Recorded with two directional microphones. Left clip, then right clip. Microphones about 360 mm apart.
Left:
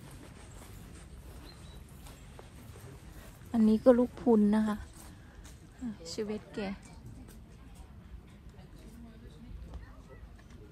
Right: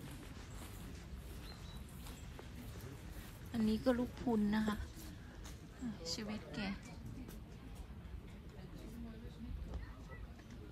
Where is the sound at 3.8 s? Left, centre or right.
Left.